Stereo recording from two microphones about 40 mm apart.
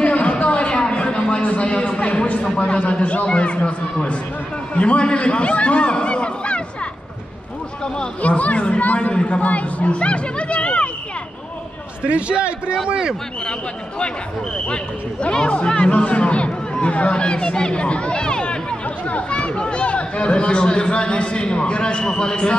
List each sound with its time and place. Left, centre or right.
0.0 s a sound: left
2.6 s a man's voice: left
8.2 s speech: left
12.0 s a man's voice: right
13.5 s speech: left